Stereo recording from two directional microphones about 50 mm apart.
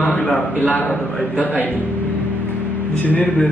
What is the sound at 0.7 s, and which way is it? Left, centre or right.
Speech, left.